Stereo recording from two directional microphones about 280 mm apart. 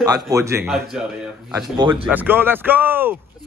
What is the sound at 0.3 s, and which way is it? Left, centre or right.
A man's voice, centre.